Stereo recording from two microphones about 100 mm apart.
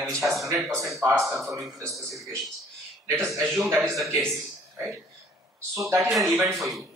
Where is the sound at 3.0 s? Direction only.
25° right (ahead or behind).